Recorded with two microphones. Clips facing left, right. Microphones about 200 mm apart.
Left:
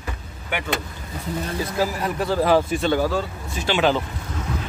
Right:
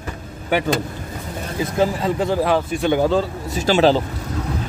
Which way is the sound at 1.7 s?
25° right (ahead or behind).